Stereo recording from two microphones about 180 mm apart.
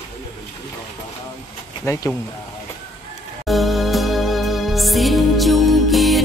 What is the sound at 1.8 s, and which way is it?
Speech, 15° left (ahead or behind).